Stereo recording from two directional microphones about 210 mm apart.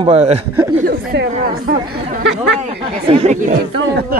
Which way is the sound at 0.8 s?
50° right (ahead or behind).